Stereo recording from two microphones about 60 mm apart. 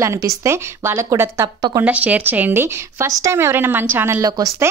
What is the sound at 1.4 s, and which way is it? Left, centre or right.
Speech, right.